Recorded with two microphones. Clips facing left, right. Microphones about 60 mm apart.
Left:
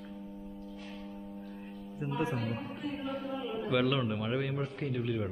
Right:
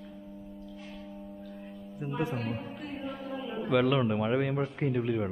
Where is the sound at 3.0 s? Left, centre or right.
Centre.